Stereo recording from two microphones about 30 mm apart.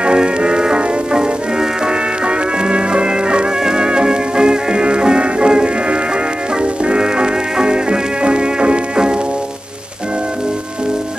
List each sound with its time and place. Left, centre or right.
0.0 s music: right